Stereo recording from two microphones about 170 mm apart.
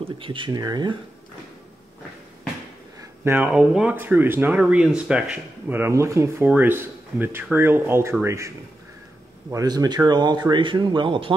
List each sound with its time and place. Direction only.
0.2 s speech: 30° right (ahead or behind)
3.0 s speech: 15° right (ahead or behind); by 11.3 s 30° right (ahead or behind)